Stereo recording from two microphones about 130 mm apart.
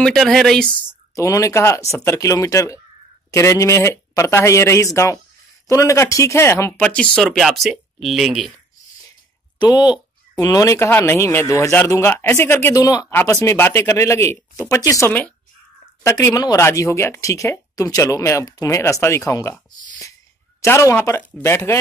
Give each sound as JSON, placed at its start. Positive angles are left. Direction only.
{"t": 0.0, "sound": "speech", "side_deg": 5}
{"t": 0.8, "sound": "speech", "side_deg": 25}
{"t": 7.2, "sound": "speech", "side_deg": 0}
{"t": 9.6, "sound": "speech", "side_deg": 35}
{"t": 20.6, "sound": "speech", "side_deg": 20}